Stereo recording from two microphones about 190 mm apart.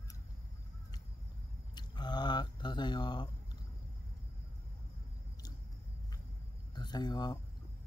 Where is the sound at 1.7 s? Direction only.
25° left (ahead or behind).